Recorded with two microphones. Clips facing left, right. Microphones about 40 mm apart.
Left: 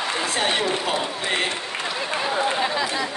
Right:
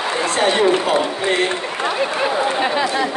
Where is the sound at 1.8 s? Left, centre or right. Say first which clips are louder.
Right 8 dB; right.